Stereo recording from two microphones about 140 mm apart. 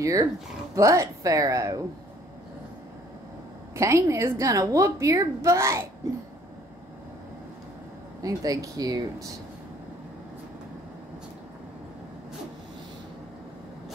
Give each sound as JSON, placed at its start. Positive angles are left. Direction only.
{"t": 0.0, "sound": "a woman's voice", "side_deg": -25}
{"t": 3.7, "sound": "a woman's voice", "side_deg": -20}
{"t": 8.2, "sound": "a woman's voice", "side_deg": -25}